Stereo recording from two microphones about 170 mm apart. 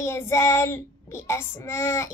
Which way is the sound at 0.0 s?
15° left (ahead or behind).